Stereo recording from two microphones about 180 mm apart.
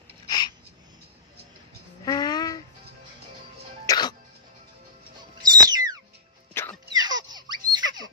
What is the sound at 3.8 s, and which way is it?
Music, 25° left (ahead or behind).